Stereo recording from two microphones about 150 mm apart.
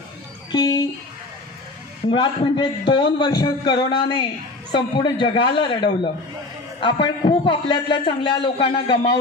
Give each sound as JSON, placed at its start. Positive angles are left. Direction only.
{"t": 0.5, "sound": "speech", "side_deg": 25}
{"t": 2.0, "sound": "a man's voice", "side_deg": 35}